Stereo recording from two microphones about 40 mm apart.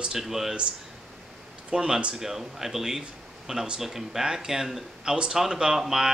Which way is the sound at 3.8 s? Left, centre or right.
Centre.